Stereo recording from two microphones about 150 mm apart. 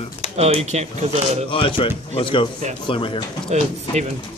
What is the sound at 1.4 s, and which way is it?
Speech, 35° left (ahead or behind).